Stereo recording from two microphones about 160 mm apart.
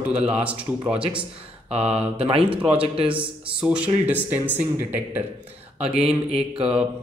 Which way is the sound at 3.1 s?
5° right (ahead or behind).